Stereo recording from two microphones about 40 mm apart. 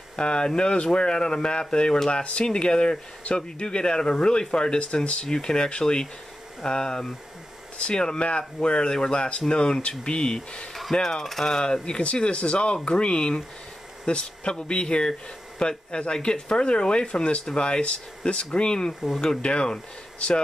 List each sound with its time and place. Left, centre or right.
0.1 s speech: left
5.2 s speech: left
10.7 s speech: centre; by 20.4 s left